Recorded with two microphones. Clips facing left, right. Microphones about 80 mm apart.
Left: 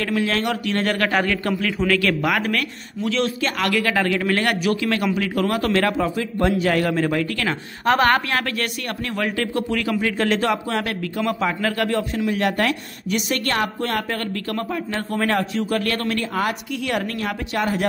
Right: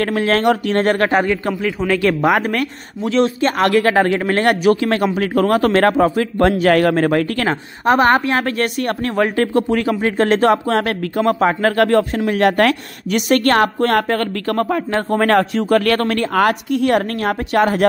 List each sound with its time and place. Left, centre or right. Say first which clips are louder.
0.0 s speech: right 6 dB; right
1.2 s a woman's voice: right 4 dB; centre
2.3 s speech: right 5 dB; right
7.8 s a woman's voice: right 4 dB; right
8.8 s speech: right 7 dB; right